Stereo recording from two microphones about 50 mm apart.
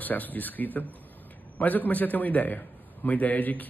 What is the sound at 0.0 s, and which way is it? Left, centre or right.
A man's voice, left.